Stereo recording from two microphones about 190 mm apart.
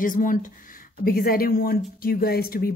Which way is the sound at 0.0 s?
45° left (ahead or behind).